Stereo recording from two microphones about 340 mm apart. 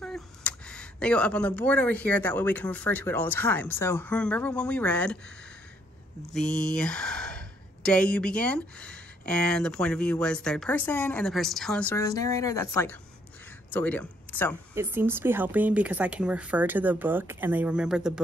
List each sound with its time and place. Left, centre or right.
0.0 s speech: centre
6.3 s speech: centre
14.7 s speech: centre